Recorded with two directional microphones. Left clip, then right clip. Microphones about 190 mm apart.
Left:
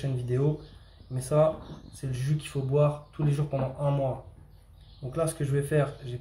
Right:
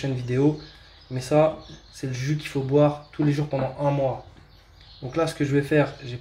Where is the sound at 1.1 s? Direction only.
25° right (ahead or behind).